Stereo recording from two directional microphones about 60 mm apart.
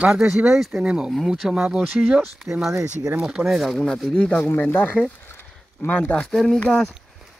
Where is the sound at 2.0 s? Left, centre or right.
Right.